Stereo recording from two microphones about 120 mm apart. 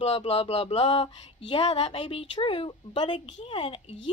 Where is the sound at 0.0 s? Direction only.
55° left (ahead or behind).